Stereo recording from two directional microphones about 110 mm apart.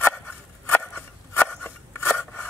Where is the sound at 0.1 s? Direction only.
15° left (ahead or behind).